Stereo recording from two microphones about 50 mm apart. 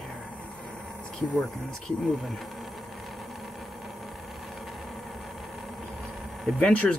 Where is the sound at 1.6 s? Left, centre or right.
Centre.